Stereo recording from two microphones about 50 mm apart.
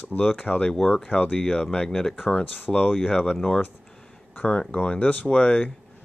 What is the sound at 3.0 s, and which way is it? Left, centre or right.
Speech, left.